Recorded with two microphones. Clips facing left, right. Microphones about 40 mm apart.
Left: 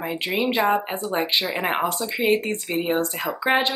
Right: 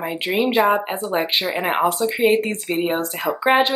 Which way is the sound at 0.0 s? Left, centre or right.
Centre.